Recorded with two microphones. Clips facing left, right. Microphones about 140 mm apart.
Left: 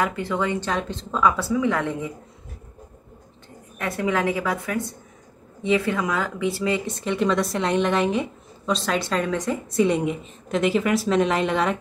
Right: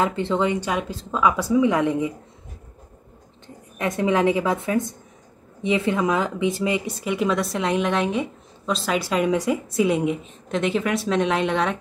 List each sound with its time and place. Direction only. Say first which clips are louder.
0.0 s a woman's voice: right 3 dB; 25° right (ahead or behind)
3.7 s a woman's voice: right 3 dB; 20° right (ahead or behind); by 11.8 s centre (ahead or behind)